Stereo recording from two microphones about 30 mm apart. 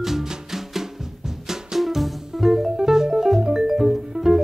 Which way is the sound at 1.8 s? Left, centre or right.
Centre.